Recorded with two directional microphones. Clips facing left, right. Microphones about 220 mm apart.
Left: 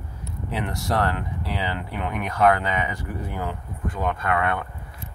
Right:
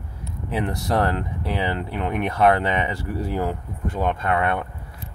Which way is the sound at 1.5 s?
25° right (ahead or behind).